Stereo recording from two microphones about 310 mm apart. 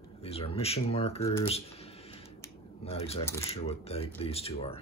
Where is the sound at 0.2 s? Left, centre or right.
Centre.